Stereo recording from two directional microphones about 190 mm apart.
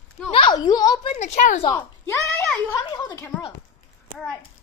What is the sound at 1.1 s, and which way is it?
Speech, 35° left (ahead or behind).